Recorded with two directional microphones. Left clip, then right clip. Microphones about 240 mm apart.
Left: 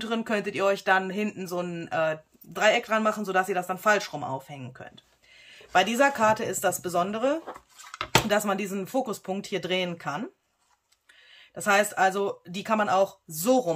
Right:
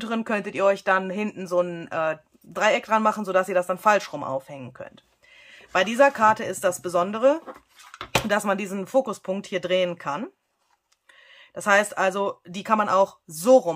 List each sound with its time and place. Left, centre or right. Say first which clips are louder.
0.0 s speech: right 1 dB; right